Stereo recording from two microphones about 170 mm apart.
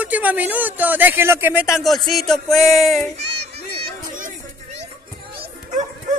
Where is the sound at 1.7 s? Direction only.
Centre (ahead or behind).